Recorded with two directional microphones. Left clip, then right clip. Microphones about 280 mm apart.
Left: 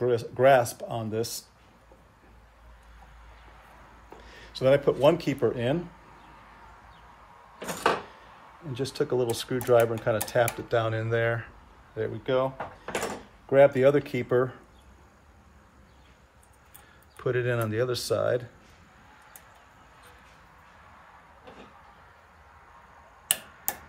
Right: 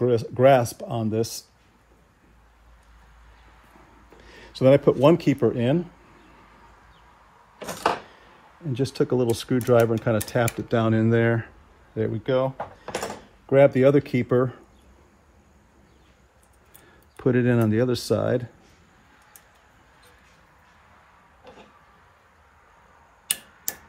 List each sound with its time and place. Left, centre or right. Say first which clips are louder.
0.0 s speech: right 4 dB; right
4.2 s speech: right 5 dB; right
8.7 s speech: right 4 dB; right
17.2 s speech: right 5 dB; centre